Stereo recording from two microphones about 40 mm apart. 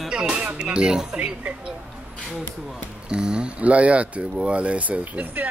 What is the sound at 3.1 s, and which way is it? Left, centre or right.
Speech, right.